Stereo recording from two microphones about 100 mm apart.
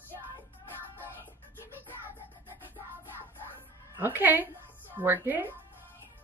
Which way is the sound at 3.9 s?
20° right (ahead or behind).